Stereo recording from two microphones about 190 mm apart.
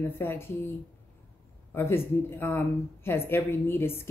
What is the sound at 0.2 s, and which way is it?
Speech, 10° left (ahead or behind).